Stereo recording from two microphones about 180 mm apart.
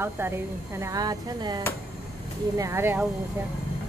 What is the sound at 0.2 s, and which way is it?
Speech, 15° right (ahead or behind).